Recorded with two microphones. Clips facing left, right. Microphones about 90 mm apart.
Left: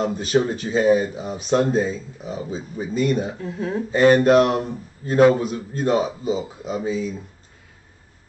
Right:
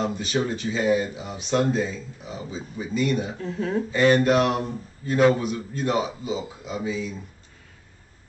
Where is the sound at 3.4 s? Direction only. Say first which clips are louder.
Even; 5° left (ahead or behind).